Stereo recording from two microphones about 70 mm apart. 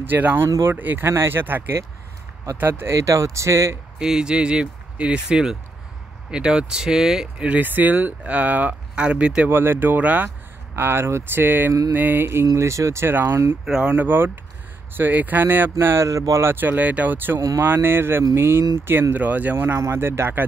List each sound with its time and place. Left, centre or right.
0.0 s speech: right
1.0 s speech: right
2.9 s speech: right
4.0 s speech: centre
9.5 s speech: right
10.8 s speech: right
11.4 s speech: right
12.5 s speech: right
13.1 s speech: right
13.7 s speech: centre
13.9 s speech: right
16.1 s speech: right
16.5 s speech: right
17.6 s speech: right